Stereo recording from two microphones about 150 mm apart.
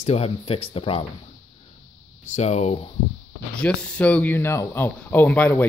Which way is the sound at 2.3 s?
45° left (ahead or behind).